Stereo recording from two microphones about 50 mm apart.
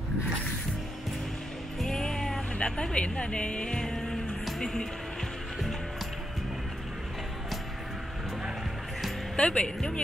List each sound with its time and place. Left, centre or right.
1.8 s music: centre
2.6 s speech: left
4.5 s music: centre
9.4 s speech: left